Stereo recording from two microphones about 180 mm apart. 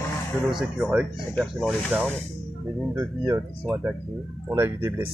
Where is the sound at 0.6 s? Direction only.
5° right (ahead or behind).